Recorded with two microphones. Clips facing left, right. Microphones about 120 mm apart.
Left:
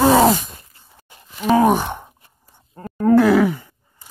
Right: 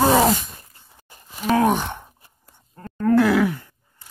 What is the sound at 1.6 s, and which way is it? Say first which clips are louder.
Speech: left 3 dB; 10° left (ahead or behind).